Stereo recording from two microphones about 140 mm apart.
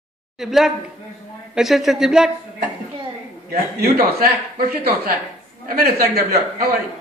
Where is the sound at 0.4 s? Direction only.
Centre (ahead or behind).